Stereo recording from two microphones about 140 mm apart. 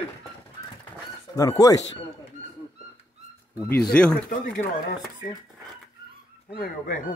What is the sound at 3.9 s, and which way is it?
Speech, 10° left (ahead or behind).